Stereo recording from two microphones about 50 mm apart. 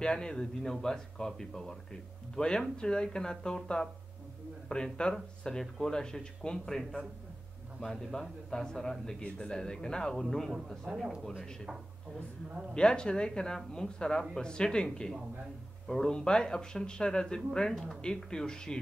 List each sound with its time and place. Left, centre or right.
0.0 s speech: centre
12.7 s speech: centre